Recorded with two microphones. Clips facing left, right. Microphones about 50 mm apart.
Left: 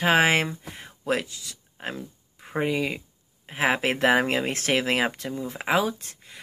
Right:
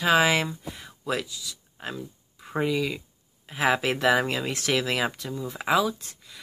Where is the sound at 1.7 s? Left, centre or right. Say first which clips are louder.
Left 2 dB; left.